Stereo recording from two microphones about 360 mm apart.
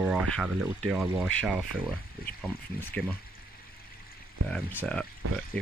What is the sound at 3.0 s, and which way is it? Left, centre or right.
Speech, centre.